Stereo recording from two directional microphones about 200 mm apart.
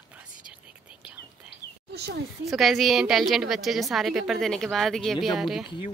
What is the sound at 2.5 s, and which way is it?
A woman's voice, centre (ahead or behind).